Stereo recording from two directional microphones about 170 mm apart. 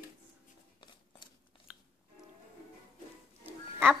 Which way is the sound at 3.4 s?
10° right (ahead or behind).